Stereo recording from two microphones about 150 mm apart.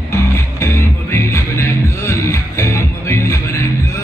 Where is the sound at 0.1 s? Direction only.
20° left (ahead or behind).